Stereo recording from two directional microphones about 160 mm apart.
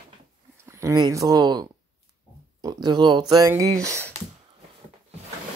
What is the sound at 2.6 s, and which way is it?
Speech, 25° right (ahead or behind).